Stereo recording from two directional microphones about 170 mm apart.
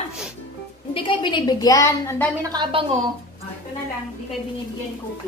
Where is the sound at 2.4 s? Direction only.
25° right (ahead or behind).